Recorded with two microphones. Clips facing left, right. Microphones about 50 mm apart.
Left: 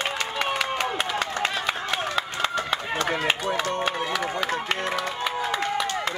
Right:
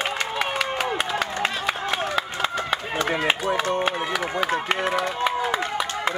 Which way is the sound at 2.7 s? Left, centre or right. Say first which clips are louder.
Right 1 dB; centre.